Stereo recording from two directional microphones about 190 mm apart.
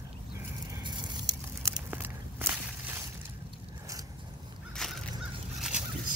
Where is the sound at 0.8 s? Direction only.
25° right (ahead or behind).